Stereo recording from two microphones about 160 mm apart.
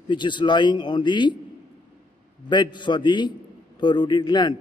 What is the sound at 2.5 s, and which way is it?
A man's voice, 30° left (ahead or behind).